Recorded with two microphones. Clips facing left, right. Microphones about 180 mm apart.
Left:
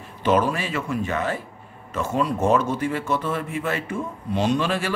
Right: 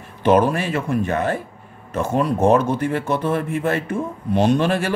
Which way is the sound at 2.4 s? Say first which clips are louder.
Right 5 dB; 60° right (ahead or behind).